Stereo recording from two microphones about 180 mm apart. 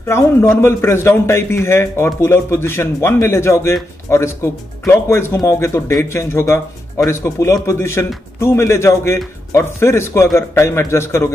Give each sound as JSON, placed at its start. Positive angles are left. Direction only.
{"t": 0.0, "sound": "speech", "side_deg": 15}